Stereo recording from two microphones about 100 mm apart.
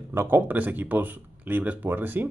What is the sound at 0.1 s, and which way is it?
Speech, 20° right (ahead or behind).